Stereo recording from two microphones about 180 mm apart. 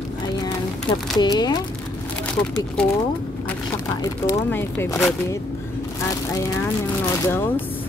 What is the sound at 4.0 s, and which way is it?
Speech, 15° left (ahead or behind).